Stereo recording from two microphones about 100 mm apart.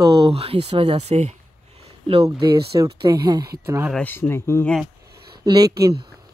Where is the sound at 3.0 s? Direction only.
45° right (ahead or behind).